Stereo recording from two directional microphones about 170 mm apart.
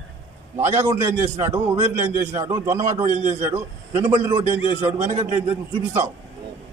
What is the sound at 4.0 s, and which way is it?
Speech, 20° right (ahead or behind).